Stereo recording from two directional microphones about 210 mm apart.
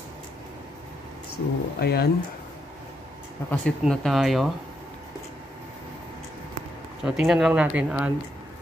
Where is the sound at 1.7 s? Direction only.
50° left (ahead or behind).